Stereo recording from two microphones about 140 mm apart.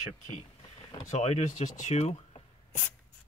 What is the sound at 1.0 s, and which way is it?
Speech, 50° left (ahead or behind).